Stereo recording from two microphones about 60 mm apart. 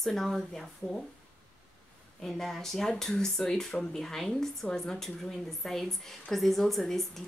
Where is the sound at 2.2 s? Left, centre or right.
Centre.